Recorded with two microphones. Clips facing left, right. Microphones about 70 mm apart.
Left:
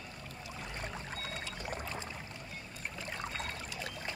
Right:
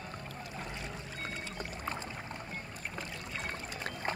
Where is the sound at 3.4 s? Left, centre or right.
Right.